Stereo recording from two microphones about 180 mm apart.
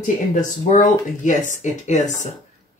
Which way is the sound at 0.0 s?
45° left (ahead or behind).